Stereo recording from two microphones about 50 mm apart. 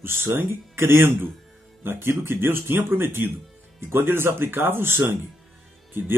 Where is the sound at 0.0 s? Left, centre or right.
Right.